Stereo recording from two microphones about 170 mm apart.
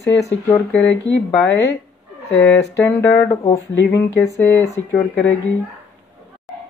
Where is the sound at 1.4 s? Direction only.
90° left.